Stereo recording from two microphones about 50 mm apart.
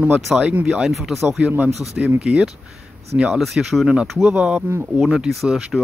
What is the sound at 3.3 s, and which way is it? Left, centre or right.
Speech, centre.